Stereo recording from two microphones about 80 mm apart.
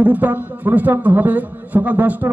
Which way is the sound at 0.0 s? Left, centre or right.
Right.